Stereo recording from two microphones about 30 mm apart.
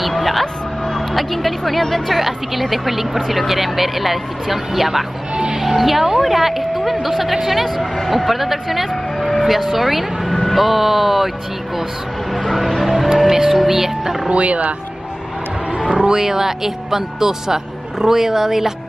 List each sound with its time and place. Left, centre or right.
0.1 s vehicle: centre
1.1 s speech: centre
2.1 s speech: centre
5.3 s music: right
5.6 s speech: centre
10.3 s speech: centre
10.6 s speech: centre
12.4 s music: centre
13.5 s speech: centre
14.3 s speech: right
15.8 s speech: right